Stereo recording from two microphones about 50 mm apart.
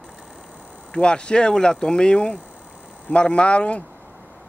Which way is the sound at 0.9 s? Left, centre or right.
Centre.